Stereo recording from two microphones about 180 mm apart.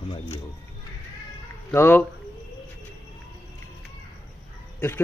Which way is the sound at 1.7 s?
10° left (ahead or behind).